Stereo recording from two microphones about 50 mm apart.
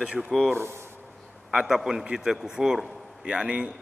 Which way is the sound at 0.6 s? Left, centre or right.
Right.